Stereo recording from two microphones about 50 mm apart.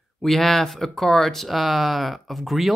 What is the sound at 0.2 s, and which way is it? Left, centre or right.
Speech, centre.